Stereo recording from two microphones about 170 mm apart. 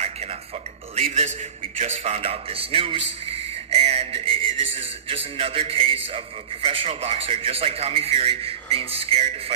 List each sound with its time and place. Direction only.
0.9 s a man's voice: 40° right (ahead or behind)